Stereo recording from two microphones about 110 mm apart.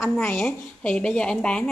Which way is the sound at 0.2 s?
10° left (ahead or behind).